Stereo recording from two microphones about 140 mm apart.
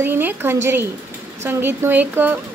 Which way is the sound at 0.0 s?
15° right (ahead or behind).